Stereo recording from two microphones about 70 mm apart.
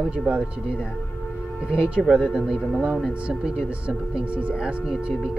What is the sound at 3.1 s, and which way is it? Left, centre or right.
Speech, centre.